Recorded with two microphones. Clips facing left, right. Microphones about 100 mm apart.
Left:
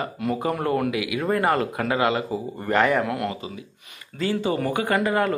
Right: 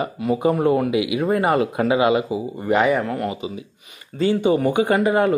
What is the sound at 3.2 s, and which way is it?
Speech, 15° right (ahead or behind).